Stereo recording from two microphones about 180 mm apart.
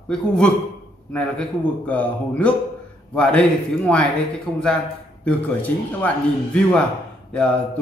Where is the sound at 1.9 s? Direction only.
5° left (ahead or behind).